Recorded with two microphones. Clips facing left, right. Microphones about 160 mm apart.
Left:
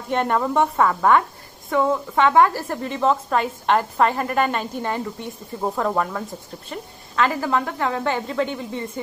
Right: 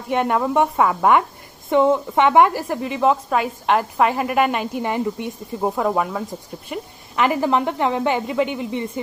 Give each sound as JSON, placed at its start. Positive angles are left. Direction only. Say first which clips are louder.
{"t": 0.1, "sound": "a woman's voice", "louder": "right 2 dB", "side_deg": -10}